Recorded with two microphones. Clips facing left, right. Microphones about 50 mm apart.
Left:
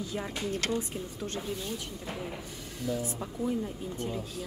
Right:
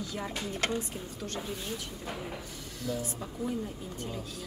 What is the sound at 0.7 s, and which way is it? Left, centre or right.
Speech, left.